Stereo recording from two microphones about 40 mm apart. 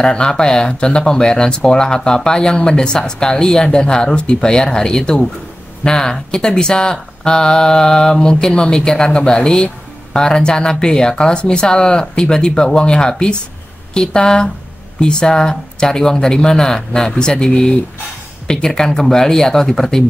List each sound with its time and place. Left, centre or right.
0.0 s speech: centre